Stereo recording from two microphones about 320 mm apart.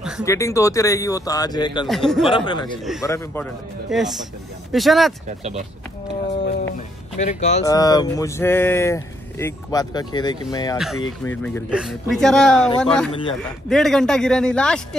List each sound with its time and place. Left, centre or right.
0.2 s speech: centre
1.9 s speech: centre
2.2 s speech: centre
7.2 s speech: left; by 13.1 s centre
13.1 s speech: centre
13.7 s speech: centre